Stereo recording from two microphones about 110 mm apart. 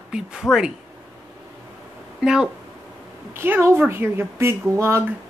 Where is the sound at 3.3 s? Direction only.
20° right (ahead or behind).